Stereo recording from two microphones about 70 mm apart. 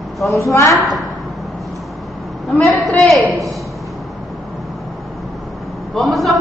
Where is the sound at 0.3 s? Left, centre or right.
Left.